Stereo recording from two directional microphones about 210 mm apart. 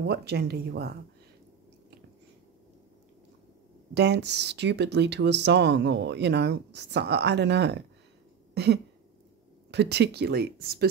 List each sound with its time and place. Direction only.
0.0 s speech: 50° right (ahead or behind)
3.9 s speech: 55° right (ahead or behind)